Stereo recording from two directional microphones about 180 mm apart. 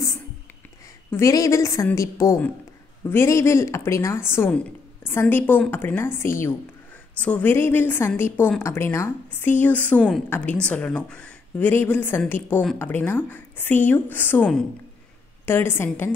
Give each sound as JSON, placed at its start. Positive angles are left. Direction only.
{"t": 1.1, "sound": "a woman's voice", "side_deg": 20}